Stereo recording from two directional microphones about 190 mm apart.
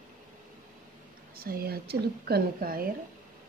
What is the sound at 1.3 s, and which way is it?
A woman's voice, 50° right (ahead or behind).